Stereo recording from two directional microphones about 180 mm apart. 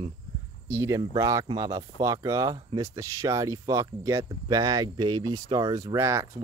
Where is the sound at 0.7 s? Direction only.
15° right (ahead or behind).